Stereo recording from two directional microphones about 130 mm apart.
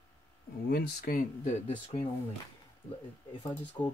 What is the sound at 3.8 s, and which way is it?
Speech, 35° left (ahead or behind).